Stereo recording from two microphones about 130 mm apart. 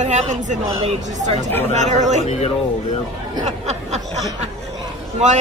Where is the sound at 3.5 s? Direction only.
60° right (ahead or behind).